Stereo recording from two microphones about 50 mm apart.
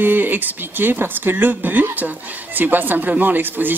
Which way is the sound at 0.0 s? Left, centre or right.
Right.